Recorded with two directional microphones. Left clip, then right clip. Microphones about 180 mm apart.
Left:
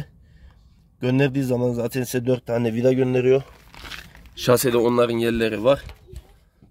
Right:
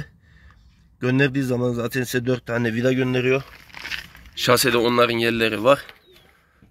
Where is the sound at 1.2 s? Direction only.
15° right (ahead or behind).